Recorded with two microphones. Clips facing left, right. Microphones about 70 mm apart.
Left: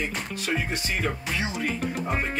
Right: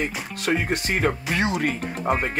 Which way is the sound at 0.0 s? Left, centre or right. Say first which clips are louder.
Right 3 dB; right.